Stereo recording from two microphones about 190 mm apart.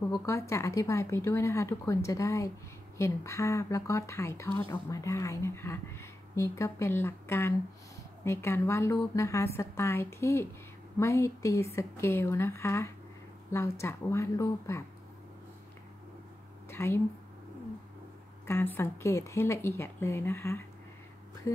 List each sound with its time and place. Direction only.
0.1 s speech: 15° left (ahead or behind)
16.7 s speech: 15° left (ahead or behind)
18.5 s speech: 10° left (ahead or behind)